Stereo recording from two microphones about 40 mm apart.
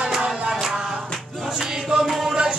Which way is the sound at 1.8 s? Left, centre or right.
Centre.